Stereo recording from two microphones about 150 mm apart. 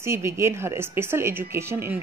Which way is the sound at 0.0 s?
15° right (ahead or behind).